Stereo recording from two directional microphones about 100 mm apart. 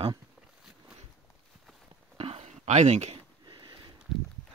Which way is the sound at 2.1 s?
75° right (ahead or behind).